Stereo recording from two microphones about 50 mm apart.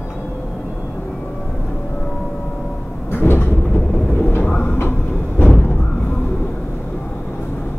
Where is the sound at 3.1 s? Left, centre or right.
Left.